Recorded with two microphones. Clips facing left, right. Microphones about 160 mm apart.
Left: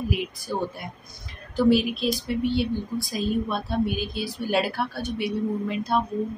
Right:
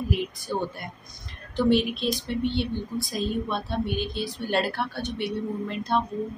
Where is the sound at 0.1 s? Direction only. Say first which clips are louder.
Even; 5° left (ahead or behind).